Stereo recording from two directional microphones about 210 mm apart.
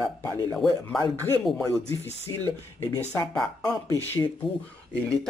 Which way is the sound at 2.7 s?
15° left (ahead or behind).